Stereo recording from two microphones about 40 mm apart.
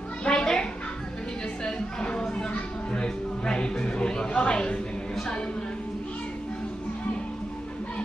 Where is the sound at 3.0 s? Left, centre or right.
Left.